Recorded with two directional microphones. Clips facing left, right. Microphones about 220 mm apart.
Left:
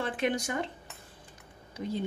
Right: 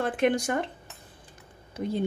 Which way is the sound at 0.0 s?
55° right (ahead or behind).